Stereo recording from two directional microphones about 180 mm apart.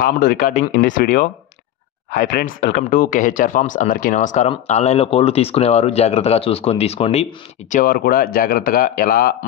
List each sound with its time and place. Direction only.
0.0 s a man's voice: 55° left (ahead or behind)
2.0 s speech: 50° left (ahead or behind)
7.8 s a man's voice: 55° left (ahead or behind)